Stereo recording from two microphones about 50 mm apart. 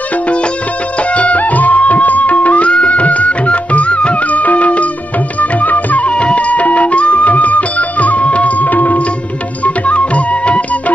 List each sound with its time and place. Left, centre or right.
1.1 s music: left